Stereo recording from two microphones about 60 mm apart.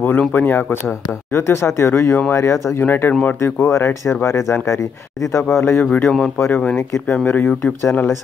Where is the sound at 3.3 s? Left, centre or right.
Left.